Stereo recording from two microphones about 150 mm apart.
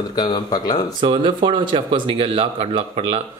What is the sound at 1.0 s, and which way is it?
Speech, 35° right (ahead or behind).